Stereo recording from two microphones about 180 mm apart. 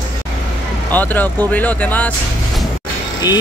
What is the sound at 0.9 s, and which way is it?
Speech, 10° left (ahead or behind).